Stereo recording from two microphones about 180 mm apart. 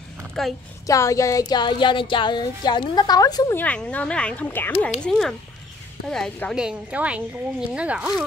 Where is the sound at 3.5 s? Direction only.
5° left (ahead or behind).